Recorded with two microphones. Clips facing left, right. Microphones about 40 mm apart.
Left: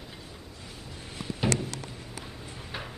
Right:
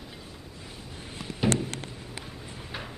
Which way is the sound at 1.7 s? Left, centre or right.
Right.